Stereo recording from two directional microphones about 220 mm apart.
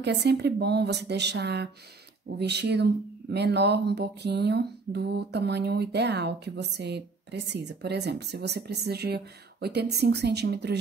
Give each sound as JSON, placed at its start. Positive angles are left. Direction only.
{"t": 0.0, "sound": "speech", "side_deg": -50}